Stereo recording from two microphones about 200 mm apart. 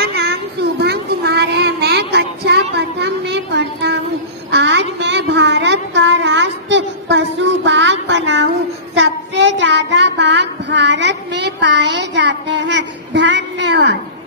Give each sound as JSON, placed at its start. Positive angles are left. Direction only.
{"t": 0.0, "sound": "child singing", "side_deg": -55}